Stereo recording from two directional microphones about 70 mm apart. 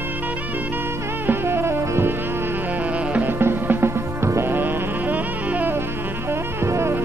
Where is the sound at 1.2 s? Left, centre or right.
Right.